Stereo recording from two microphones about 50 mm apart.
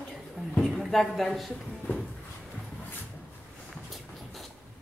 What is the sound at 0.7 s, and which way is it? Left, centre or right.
Speech, centre.